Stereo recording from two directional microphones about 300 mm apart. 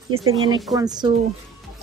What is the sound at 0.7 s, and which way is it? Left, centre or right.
Speech, centre.